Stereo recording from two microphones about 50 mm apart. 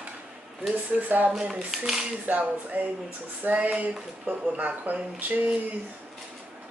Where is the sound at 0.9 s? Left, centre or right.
Right.